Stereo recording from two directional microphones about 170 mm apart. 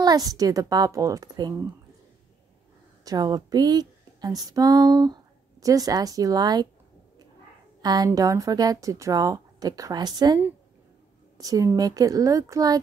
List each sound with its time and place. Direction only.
0.0 s speech: 20° right (ahead or behind)
3.1 s speech: 20° right (ahead or behind)
7.8 s speech: 25° right (ahead or behind)